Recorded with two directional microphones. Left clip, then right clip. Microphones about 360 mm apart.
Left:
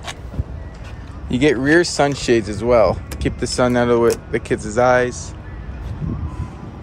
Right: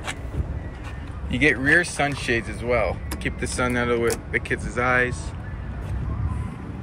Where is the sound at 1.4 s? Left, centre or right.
Centre.